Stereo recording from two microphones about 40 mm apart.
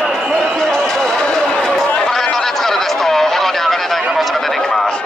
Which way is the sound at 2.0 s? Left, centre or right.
Centre.